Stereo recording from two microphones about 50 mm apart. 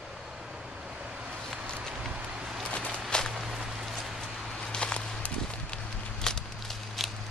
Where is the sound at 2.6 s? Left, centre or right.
Left.